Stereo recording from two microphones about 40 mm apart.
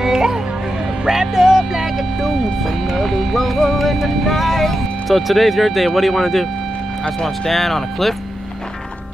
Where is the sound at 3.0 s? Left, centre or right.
Centre.